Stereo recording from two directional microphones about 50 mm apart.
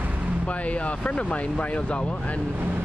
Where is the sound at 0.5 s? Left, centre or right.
Left.